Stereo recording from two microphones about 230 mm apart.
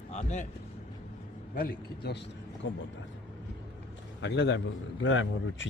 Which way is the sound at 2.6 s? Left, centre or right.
Left.